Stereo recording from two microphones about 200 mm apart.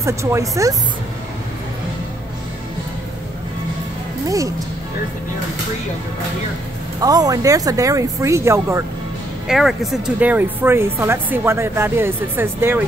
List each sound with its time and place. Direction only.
0.0 s speech: 15° right (ahead or behind)
7.0 s speech: 20° right (ahead or behind)
9.5 s speech: centre (ahead or behind)